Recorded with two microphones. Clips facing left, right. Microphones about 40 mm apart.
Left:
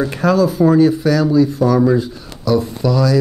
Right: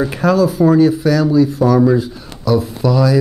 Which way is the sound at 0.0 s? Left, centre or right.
Centre.